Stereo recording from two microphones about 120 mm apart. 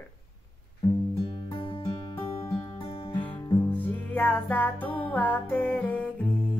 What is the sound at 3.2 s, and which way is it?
Music, 15° left (ahead or behind).